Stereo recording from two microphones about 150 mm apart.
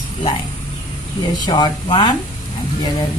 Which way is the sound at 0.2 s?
30° left (ahead or behind).